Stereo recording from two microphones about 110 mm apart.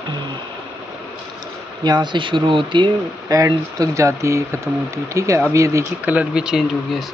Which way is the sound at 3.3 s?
30° right (ahead or behind).